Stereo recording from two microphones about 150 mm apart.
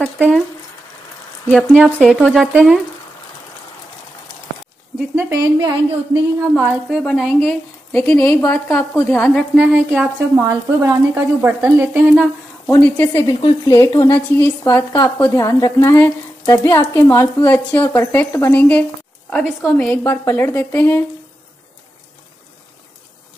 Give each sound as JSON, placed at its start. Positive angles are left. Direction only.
{"t": 0.0, "sound": "speech", "side_deg": 0}
{"t": 1.5, "sound": "speech", "side_deg": 5}
{"t": 5.1, "sound": "speech", "side_deg": -20}
{"t": 6.4, "sound": "speech", "side_deg": -15}
{"t": 7.0, "sound": "a woman's voice", "side_deg": 5}
{"t": 7.9, "sound": "a woman's voice", "side_deg": 10}
{"t": 9.6, "sound": "speech", "side_deg": -10}
{"t": 12.6, "sound": "a woman's voice", "side_deg": 15}
{"t": 13.3, "sound": "a woman's voice", "side_deg": 25}